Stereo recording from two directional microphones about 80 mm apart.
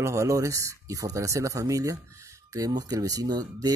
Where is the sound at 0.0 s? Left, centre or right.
Right.